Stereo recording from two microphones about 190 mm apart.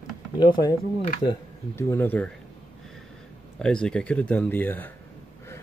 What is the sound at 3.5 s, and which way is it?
Speech, 5° left (ahead or behind).